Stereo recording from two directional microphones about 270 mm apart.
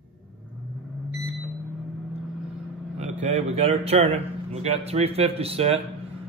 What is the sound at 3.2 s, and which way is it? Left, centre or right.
A man's voice, right.